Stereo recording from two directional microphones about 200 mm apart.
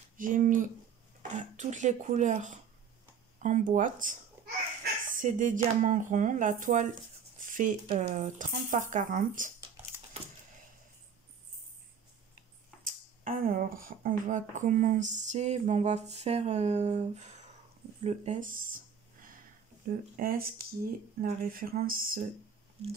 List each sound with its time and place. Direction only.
0.2 s speech: 40° right (ahead or behind)
12.8 s speech: 45° right (ahead or behind)
19.9 s speech: 45° right (ahead or behind)